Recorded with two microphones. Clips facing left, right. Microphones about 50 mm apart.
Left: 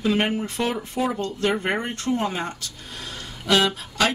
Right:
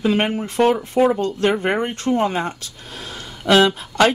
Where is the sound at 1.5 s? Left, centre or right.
Centre.